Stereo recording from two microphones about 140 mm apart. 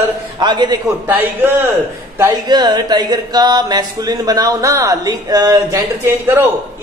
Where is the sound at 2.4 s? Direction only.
30° right (ahead or behind).